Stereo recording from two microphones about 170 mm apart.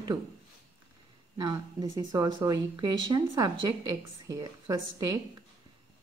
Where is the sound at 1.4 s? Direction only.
20° right (ahead or behind).